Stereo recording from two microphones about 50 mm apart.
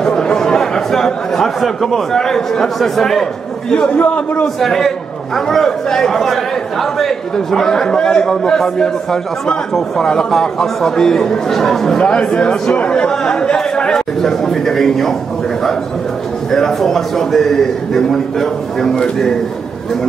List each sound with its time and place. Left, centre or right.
0.0 s chatter: centre
2.1 s a man's voice: centre
3.9 s a man's voice: left
4.6 s a man's voice: centre
12.0 s a man's voice: centre
16.5 s a man's voice: centre